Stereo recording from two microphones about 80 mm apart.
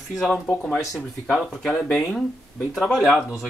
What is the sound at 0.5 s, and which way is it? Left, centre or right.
Speech, left.